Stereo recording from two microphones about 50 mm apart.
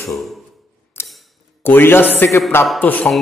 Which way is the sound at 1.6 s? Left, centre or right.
Left.